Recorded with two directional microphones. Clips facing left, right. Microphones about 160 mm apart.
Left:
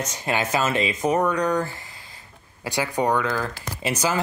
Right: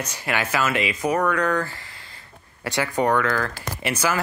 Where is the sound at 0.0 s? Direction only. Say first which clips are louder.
Left 1 dB; 20° left (ahead or behind).